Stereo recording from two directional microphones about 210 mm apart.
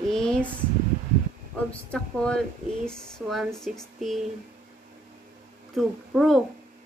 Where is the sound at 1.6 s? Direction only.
5° left (ahead or behind).